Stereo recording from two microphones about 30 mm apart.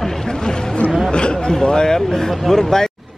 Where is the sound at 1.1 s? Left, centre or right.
Left; by 2.9 s centre.